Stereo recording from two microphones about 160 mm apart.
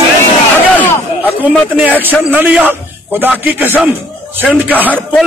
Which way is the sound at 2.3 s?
10° right (ahead or behind).